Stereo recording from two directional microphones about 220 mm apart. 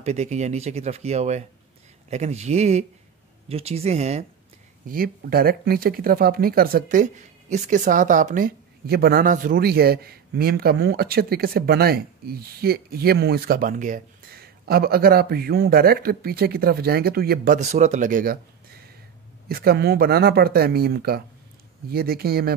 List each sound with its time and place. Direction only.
0.0 s speech: 30° right (ahead or behind)
4.8 s speech: 40° right (ahead or behind)
17.6 s speech: 30° right (ahead or behind)
19.4 s speech: 45° right (ahead or behind)